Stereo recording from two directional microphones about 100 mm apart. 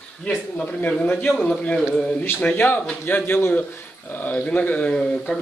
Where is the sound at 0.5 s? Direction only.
15° left (ahead or behind).